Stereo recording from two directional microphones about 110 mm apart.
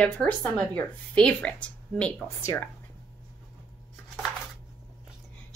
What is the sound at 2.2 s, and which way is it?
Speech, 30° left (ahead or behind).